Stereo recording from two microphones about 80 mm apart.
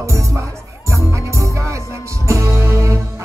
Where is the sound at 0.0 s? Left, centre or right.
Right.